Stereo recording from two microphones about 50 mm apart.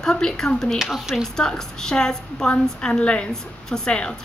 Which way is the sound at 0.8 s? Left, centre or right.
Centre.